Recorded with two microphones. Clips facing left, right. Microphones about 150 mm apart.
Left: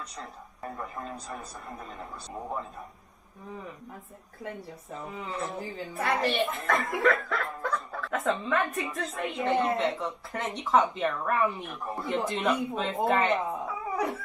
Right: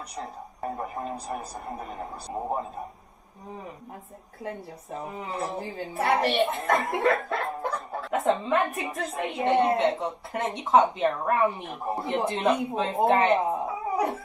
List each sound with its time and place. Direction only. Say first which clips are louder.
0.2 s speech: right 10 dB; 30° right (ahead or behind)
4.4 s speech: right 3 dB; 30° right (ahead or behind)
12.9 s dog: right 5 dB; 25° right (ahead or behind)